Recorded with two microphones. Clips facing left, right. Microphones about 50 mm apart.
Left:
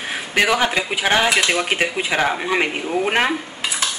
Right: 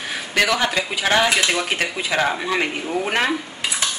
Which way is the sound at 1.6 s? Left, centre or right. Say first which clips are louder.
Left 3 dB; left.